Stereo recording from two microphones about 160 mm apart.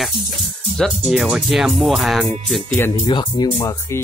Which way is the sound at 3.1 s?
30° left (ahead or behind).